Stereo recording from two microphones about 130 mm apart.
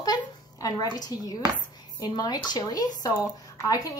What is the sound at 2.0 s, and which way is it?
Dishes, 30° left (ahead or behind).